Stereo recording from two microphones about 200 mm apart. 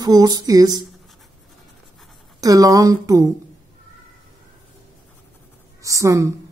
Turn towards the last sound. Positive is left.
turn(degrees=-15)  # may be behind; listen again after turning